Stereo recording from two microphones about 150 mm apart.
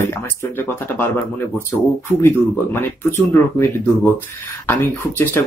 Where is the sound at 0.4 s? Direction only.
15° left (ahead or behind).